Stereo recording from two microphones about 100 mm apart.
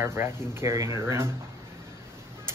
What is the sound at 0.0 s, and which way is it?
Speech, 25° right (ahead or behind).